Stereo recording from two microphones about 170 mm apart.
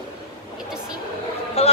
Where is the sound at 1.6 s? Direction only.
35° left (ahead or behind).